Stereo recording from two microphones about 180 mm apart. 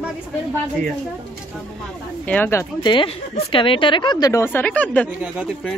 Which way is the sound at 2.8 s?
25° left (ahead or behind).